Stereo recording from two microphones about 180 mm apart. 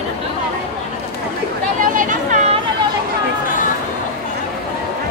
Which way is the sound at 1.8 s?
50° right (ahead or behind).